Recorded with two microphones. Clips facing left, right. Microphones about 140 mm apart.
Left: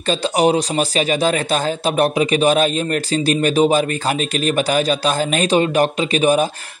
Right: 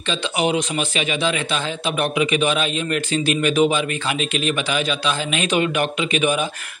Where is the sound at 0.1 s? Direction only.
40° left (ahead or behind).